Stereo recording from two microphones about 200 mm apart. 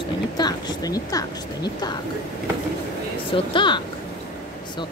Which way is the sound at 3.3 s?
25° left (ahead or behind).